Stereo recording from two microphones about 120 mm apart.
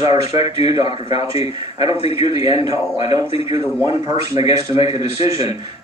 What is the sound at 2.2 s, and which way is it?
A man's voice, 30° right (ahead or behind).